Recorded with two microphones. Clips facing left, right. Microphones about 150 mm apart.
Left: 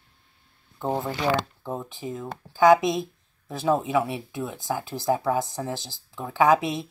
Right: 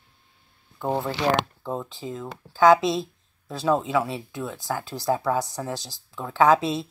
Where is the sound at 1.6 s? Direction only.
20° left (ahead or behind).